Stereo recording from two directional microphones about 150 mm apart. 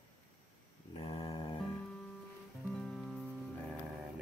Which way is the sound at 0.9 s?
40° left (ahead or behind).